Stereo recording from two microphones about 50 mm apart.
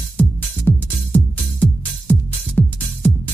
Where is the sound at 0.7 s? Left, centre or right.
Left.